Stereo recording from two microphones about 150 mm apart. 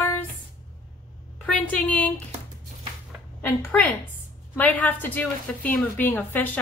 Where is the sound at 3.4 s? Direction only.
15° left (ahead or behind).